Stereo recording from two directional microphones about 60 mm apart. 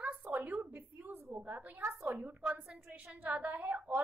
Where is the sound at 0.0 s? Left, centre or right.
Right.